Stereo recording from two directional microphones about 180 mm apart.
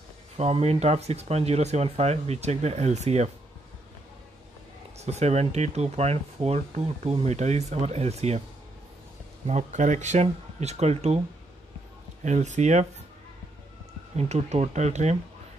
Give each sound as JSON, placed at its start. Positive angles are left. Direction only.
{"t": 0.4, "sound": "speech", "side_deg": -35}
{"t": 4.9, "sound": "speech", "side_deg": -35}
{"t": 9.5, "sound": "speech", "side_deg": -40}
{"t": 12.2, "sound": "speech", "side_deg": -40}
{"t": 14.1, "sound": "speech", "side_deg": -35}